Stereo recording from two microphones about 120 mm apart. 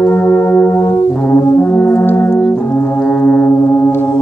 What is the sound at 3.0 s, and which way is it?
Foghorn, 5° left (ahead or behind).